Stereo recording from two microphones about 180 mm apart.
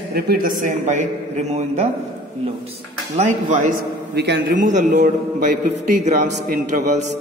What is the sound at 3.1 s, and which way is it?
Speech, 40° right (ahead or behind).